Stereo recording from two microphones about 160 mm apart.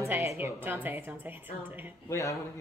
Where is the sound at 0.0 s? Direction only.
20° right (ahead or behind).